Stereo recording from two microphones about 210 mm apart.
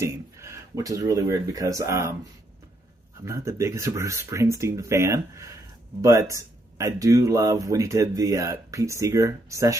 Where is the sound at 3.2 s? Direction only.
15° right (ahead or behind).